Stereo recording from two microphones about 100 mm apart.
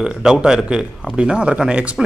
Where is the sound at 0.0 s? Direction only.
5° right (ahead or behind).